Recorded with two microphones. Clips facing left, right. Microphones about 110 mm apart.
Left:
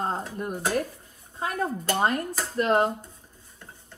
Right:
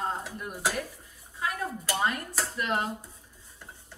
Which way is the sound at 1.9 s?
40° left (ahead or behind).